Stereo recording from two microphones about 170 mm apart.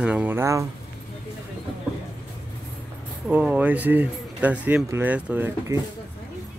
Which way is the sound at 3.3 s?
10° right (ahead or behind).